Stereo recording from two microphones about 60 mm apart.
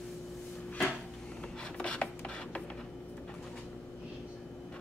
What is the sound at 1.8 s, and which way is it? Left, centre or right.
Filing, centre.